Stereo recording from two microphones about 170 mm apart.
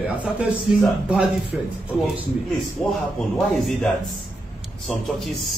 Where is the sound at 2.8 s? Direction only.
5° left (ahead or behind).